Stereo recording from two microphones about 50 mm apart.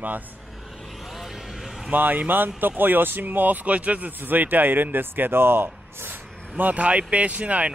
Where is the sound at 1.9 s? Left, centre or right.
Right.